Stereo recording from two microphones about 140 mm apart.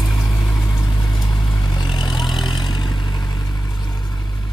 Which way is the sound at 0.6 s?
25° left (ahead or behind).